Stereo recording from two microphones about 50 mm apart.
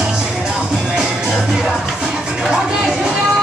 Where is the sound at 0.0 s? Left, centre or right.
Centre.